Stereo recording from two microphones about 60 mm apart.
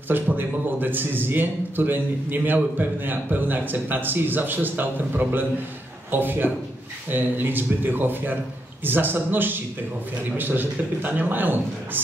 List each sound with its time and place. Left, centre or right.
0.1 s a man's voice: right